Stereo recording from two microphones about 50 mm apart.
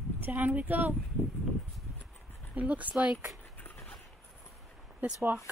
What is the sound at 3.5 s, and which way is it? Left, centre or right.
Horse, left.